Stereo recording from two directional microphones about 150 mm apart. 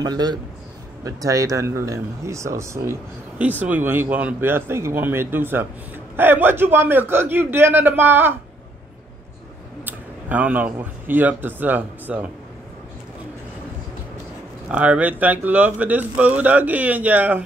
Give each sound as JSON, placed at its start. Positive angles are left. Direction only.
{"t": 0.0, "sound": "a man's voice", "side_deg": -25}
{"t": 9.8, "sound": "speech", "side_deg": -10}
{"t": 14.7, "sound": "speech", "side_deg": -10}